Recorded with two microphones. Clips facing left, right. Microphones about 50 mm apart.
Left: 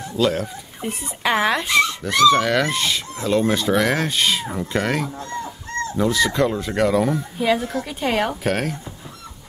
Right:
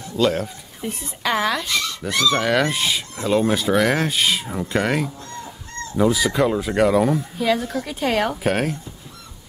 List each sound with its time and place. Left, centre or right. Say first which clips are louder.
0.2 s speech: right 1 dB; centre
0.8 s speech: left 2 dB; centre
2.0 s speech: left 2 dB; centre
7.3 s speech: left 1 dB; centre